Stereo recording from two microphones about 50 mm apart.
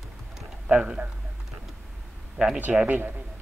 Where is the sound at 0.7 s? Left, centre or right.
Right.